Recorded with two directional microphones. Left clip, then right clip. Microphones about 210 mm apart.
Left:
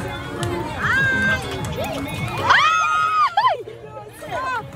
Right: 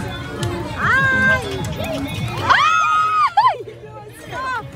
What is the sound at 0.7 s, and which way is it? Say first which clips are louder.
Music: right 4 dB; 15° right (ahead or behind).